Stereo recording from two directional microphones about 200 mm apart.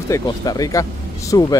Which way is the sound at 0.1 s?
15° left (ahead or behind).